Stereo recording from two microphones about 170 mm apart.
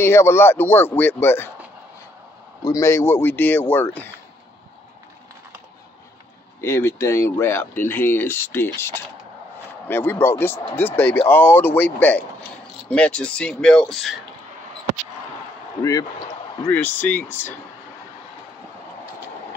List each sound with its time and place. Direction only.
0.0 s speech: 15° left (ahead or behind)
2.6 s speech: 20° left (ahead or behind)
6.6 s speech: 15° left (ahead or behind)
15.8 s speech: 20° left (ahead or behind)